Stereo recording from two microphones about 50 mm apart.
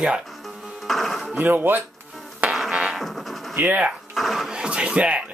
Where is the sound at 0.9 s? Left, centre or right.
Centre.